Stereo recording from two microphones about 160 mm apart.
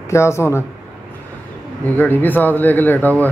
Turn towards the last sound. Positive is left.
turn(degrees=10)  # may be behind; listen again after turning